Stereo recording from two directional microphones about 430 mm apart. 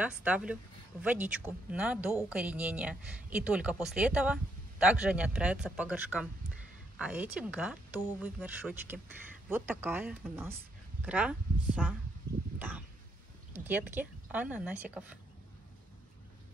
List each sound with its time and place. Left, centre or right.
0.0 s a woman's voice: centre